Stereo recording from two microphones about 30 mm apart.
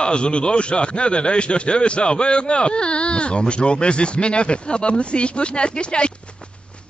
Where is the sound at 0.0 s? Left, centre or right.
Left.